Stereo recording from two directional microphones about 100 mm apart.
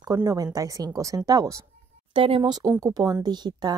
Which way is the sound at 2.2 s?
65° right (ahead or behind).